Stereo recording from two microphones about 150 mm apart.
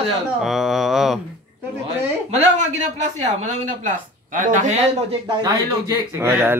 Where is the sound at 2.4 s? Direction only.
50° right (ahead or behind).